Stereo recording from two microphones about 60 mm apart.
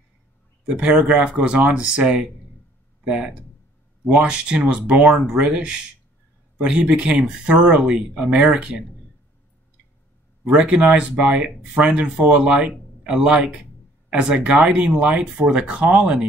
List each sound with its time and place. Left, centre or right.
0.7 s speech: centre
10.5 s speech: centre